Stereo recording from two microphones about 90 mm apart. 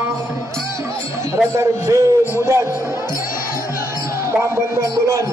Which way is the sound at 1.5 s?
30° right (ahead or behind).